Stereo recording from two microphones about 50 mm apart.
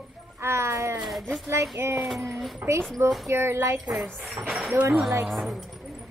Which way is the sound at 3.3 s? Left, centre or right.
Right.